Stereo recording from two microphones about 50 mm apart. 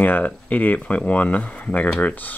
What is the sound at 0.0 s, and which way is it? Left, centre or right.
Speech, left.